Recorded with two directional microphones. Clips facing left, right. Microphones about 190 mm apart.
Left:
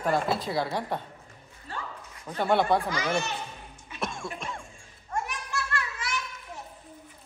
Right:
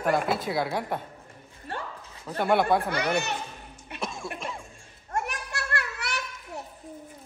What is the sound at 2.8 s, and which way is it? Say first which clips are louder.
Speech: right 2 dB; 65° right (ahead or behind).